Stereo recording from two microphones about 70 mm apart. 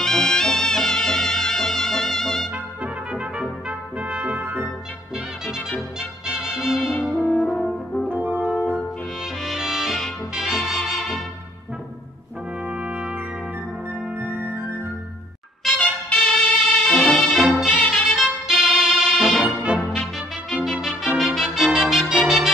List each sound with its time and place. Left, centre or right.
0.0 s music: centre
2.5 s trumpet: centre
3.6 s brass instrument: centre
5.9 s music: centre
7.1 s french horn: centre
8.1 s brass instrument: right
8.5 s brass instrument: centre
9.2 s music: centre
12.6 s brass instrument: centre
14.1 s music: right
15.8 s music: centre
17.3 s music: centre
19.4 s brass instrument: centre
20.0 s brass instrument: centre